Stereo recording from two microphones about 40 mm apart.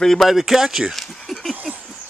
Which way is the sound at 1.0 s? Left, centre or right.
Centre.